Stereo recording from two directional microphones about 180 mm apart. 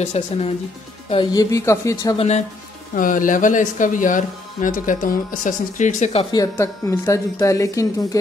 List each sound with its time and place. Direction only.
0.0 s speech: 35° left (ahead or behind)
1.1 s speech: 25° left (ahead or behind)
2.1 s speech: 40° left (ahead or behind)
6.3 s speech: 15° left (ahead or behind)